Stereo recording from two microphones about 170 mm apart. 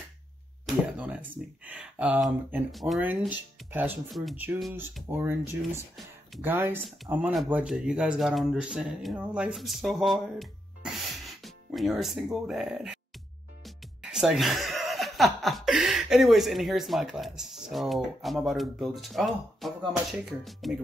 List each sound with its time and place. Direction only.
0.7 s a sound: 5° right (ahead or behind)
1.6 s speech: 10° right (ahead or behind)
4.1 s speech: centre (ahead or behind)
5.0 s speech: 15° right (ahead or behind)